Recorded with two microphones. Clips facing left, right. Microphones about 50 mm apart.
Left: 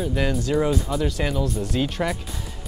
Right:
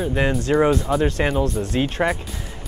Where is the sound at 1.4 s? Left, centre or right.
Right.